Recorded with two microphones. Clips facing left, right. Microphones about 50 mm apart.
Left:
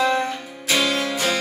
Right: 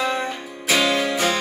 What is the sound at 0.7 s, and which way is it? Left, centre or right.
Music, right.